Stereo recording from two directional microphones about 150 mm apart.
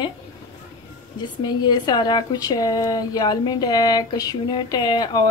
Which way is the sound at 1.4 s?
30° left (ahead or behind).